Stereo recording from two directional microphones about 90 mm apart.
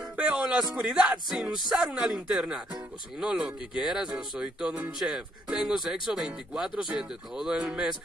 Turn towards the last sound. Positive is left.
turn(degrees=-10)  # may be behind; listen again after turning